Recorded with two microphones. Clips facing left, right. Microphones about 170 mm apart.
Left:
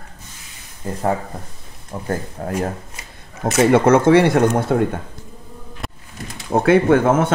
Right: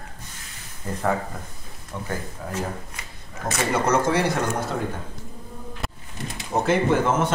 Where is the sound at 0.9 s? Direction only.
30° left (ahead or behind).